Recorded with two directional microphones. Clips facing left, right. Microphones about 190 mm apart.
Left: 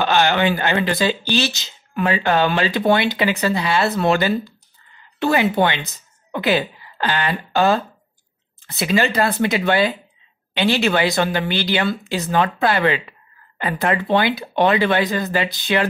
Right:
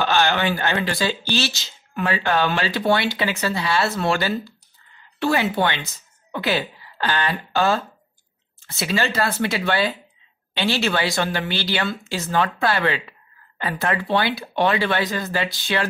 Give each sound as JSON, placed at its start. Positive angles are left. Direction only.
{"t": 0.0, "sound": "speech", "side_deg": 15}